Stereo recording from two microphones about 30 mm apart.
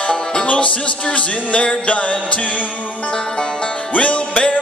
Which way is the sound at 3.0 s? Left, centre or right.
Left.